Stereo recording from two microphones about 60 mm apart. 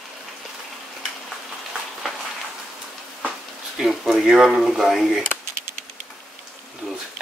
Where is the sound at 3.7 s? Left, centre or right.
Centre.